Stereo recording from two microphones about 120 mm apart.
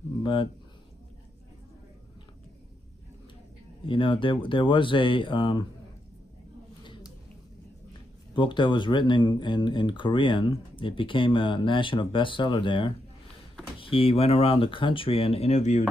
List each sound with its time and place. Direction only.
0.2 s speech: 45° left (ahead or behind)
3.8 s speech: 45° left (ahead or behind)
8.4 s speech: 40° left (ahead or behind); by 15.8 s 75° left (ahead or behind)